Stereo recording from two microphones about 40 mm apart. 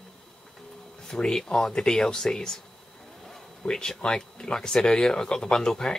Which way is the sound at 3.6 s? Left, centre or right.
Centre.